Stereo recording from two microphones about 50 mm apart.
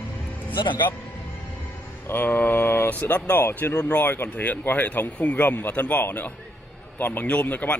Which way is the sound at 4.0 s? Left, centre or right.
Left.